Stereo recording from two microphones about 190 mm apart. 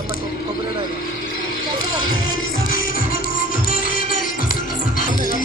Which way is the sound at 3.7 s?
45° left (ahead or behind).